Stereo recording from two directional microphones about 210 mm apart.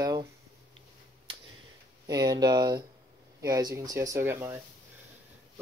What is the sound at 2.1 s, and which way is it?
Speech, 20° right (ahead or behind).